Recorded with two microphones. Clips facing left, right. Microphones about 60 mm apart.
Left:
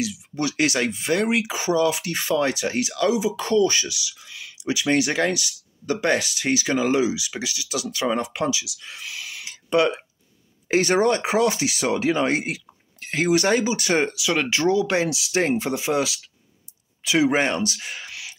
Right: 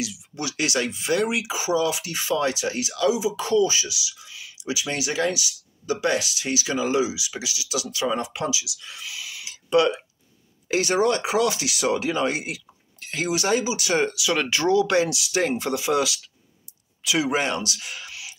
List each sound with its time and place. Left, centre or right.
0.0 s speech: left
9.8 s speech: left
10.7 s speech: left
14.3 s speech: left